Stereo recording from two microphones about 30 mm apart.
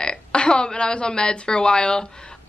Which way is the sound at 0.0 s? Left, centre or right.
Left.